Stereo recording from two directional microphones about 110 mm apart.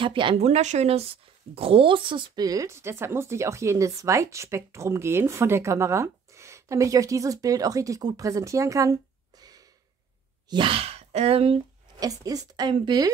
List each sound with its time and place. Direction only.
0.0 s speech: 50° right (ahead or behind)
0.4 s speech: 85° right
1.5 s speech: 60° right (ahead or behind); by 8.9 s 30° right (ahead or behind)
9.4 s gasp: 35° right (ahead or behind)
10.5 s speech: 55° right (ahead or behind)
12.0 s speech: 35° right (ahead or behind)